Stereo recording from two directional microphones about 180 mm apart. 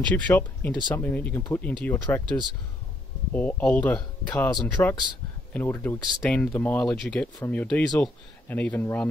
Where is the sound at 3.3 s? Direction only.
10° left (ahead or behind).